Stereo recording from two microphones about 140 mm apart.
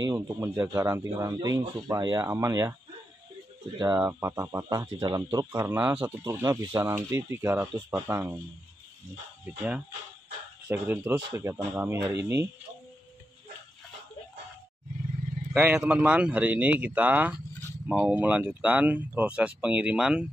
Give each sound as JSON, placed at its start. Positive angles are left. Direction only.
{"t": 0.0, "sound": "speech", "side_deg": -30}
{"t": 3.7, "sound": "speech", "side_deg": -25}
{"t": 5.6, "sound": "speech", "side_deg": -15}
{"t": 10.7, "sound": "speech", "side_deg": -15}
{"t": 15.5, "sound": "speech", "side_deg": -10}